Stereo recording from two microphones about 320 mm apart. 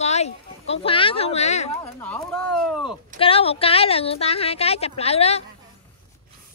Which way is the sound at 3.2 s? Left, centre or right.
Centre.